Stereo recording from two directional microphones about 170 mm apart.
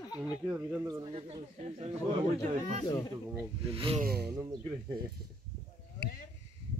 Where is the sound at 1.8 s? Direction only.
35° right (ahead or behind).